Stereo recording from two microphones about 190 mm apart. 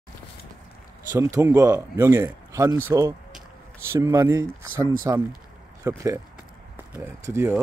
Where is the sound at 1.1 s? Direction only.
15° right (ahead or behind).